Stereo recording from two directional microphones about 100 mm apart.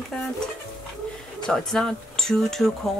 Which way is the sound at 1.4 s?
5° left (ahead or behind).